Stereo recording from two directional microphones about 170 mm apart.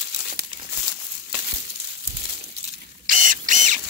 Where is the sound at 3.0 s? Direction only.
50° right (ahead or behind).